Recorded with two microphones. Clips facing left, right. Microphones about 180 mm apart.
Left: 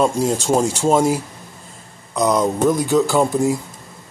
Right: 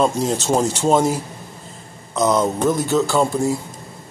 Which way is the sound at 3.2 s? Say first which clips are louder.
Left 2 dB; 15° left (ahead or behind).